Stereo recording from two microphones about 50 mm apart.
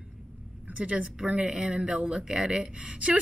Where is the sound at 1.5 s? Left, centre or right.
Centre.